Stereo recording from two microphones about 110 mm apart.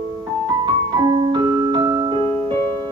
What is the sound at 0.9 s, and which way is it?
Keyboard, 40° right (ahead or behind).